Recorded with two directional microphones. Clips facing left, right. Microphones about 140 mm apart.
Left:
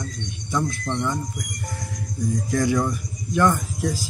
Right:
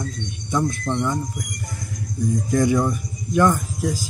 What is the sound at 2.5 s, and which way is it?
Speech, 15° right (ahead or behind).